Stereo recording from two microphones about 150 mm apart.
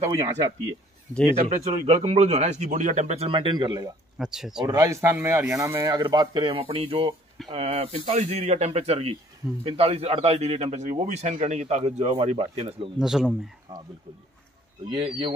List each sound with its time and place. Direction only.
0.0 s speech: 45° right (ahead or behind)
2.0 s speech: 45° right (ahead or behind)
3.3 s speech: 30° right (ahead or behind)
4.2 s speech: 5° right (ahead or behind)
4.6 s speech: 20° right (ahead or behind)
5.9 s speech: 30° right (ahead or behind)
13.0 s speech: 5° right (ahead or behind)
14.9 s speech: 35° right (ahead or behind)